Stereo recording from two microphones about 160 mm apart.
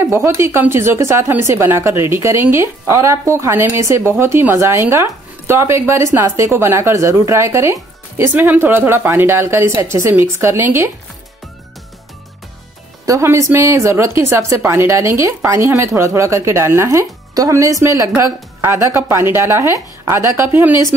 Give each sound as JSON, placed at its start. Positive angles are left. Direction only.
{"t": 0.1, "sound": "speech", "side_deg": -15}
{"t": 13.0, "sound": "speech", "side_deg": -20}